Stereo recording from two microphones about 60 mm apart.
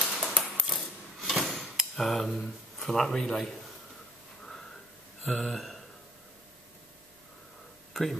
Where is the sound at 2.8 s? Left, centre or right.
Centre.